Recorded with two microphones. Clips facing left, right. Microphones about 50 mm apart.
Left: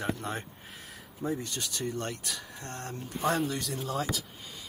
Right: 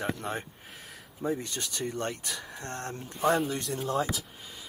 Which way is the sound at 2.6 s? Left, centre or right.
Right.